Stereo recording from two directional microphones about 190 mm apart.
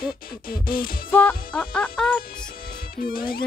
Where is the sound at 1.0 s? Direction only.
10° left (ahead or behind).